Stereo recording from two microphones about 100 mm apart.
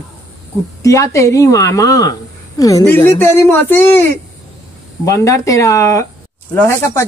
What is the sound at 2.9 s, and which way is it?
A woman's voice, 20° left (ahead or behind).